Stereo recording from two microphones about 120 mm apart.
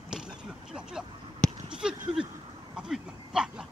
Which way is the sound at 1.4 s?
5° left (ahead or behind).